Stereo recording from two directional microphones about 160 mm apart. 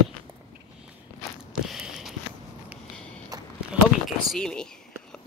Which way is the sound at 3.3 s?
25° right (ahead or behind).